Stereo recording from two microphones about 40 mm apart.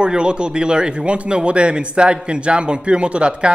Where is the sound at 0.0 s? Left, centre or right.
Right.